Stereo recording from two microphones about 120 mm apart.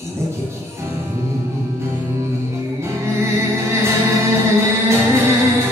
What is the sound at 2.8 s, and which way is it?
Music, 20° right (ahead or behind).